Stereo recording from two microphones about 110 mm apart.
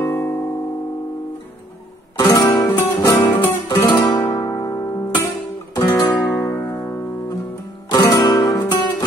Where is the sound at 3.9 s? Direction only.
40° left (ahead or behind).